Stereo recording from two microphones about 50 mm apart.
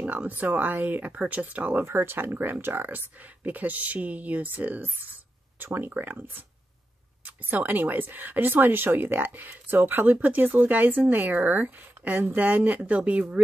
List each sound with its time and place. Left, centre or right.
0.0 s speech: right
1.9 s speech: right
5.7 s speech: right
7.2 s speech: right